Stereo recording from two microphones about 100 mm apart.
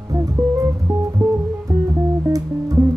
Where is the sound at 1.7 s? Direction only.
35° right (ahead or behind).